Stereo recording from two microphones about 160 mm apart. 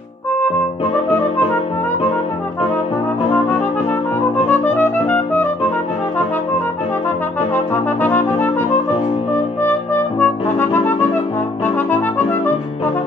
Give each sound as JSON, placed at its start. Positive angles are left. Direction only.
{"t": 4.5, "sound": "music", "side_deg": 10}
{"t": 7.7, "sound": "brass instrument", "side_deg": 10}
{"t": 9.7, "sound": "brass instrument", "side_deg": 10}